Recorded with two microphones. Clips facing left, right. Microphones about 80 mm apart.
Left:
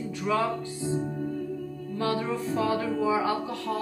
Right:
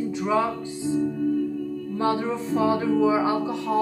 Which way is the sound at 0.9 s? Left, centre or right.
Left.